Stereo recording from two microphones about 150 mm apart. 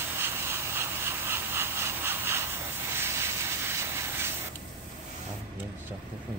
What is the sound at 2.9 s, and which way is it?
Steam, 15° right (ahead or behind).